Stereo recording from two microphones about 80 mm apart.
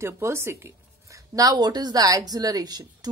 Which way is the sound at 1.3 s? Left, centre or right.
Right.